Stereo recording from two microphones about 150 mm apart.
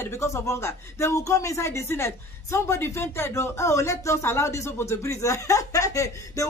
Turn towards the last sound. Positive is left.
turn(degrees=20)  # may be behind; listen again after turning